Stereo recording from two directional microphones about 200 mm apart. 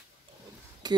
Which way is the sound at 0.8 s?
20° right (ahead or behind).